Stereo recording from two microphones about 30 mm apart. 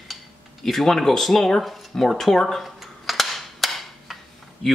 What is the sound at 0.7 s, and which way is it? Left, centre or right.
Speech, centre.